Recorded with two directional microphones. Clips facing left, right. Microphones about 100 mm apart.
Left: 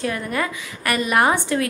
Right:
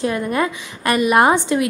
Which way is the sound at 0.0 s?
20° right (ahead or behind).